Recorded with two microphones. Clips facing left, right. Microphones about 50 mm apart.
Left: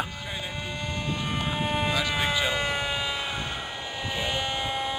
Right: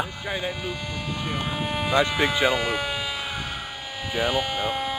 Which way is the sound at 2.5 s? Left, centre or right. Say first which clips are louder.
Right 2 dB; centre.